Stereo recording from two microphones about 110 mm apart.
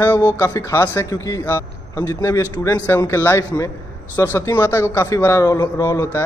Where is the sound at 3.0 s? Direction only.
25° left (ahead or behind).